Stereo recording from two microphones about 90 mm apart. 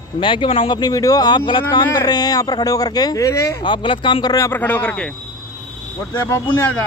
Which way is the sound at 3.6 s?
65° left (ahead or behind).